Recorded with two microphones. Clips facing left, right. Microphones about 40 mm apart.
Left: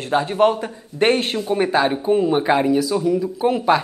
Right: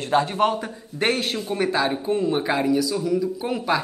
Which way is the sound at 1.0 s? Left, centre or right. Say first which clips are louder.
Left 5 dB; left.